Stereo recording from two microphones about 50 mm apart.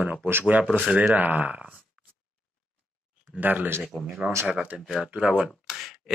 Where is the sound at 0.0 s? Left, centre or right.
Right.